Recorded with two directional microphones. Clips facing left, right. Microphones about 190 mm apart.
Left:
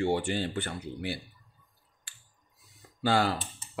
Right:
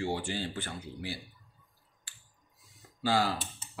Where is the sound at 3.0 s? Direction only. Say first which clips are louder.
Left 3 dB; 60° left (ahead or behind).